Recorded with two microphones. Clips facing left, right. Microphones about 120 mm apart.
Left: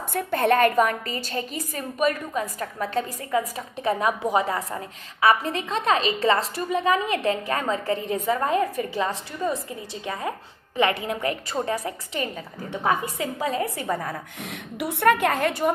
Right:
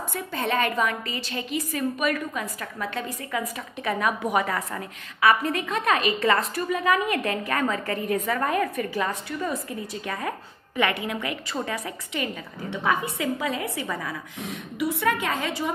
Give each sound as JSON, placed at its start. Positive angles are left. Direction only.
{"t": 0.1, "sound": "a woman's voice", "side_deg": 55}
{"t": 14.4, "sound": "a woman's voice", "side_deg": 70}